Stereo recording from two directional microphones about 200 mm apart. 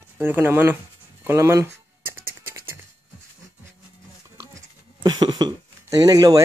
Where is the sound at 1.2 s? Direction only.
10° right (ahead or behind).